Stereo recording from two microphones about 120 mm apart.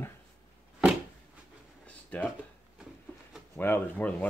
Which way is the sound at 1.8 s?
10° left (ahead or behind).